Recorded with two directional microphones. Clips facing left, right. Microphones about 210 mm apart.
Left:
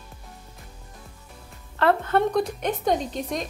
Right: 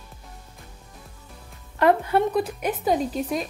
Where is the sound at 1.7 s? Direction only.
15° right (ahead or behind).